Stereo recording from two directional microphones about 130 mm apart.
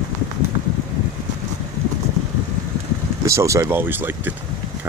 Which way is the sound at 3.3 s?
25° right (ahead or behind).